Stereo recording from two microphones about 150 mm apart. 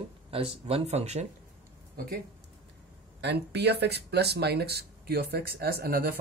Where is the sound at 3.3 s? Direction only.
90° right.